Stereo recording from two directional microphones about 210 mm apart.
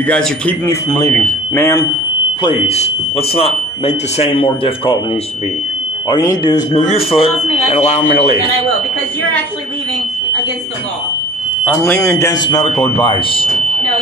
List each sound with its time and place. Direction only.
0.0 s speech: 5° left (ahead or behind)
2.4 s speech: 25° left (ahead or behind)
6.0 s speech: 20° left (ahead or behind)
6.7 s speech: 30° left (ahead or behind)
11.6 s speech: 5° left (ahead or behind); by 13.5 s 25° left (ahead or behind)